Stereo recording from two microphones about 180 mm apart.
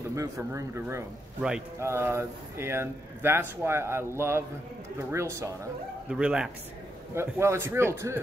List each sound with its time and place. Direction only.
0.1 s speech: 15° right (ahead or behind)
6.0 s speech: 5° right (ahead or behind)
7.2 s speech: 15° right (ahead or behind)